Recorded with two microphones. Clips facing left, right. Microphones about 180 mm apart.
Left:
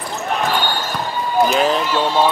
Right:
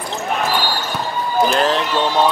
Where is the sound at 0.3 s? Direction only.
Centre (ahead or behind).